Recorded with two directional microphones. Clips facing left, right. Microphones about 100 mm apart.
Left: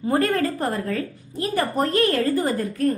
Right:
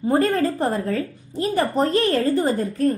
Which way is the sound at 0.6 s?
20° right (ahead or behind).